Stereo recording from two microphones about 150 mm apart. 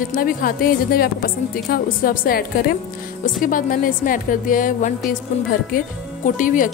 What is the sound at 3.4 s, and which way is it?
Speech, 65° left (ahead or behind).